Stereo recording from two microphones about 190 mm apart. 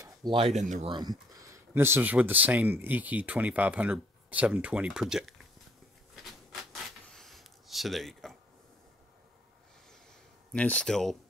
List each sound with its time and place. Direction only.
0.0 s a sound: 25° right (ahead or behind)
0.6 s speech: 35° right (ahead or behind)
0.9 s speech: 20° right (ahead or behind); by 5.3 s centre (ahead or behind)
6.2 s writing: centre (ahead or behind)
10.5 s speech: 5° left (ahead or behind)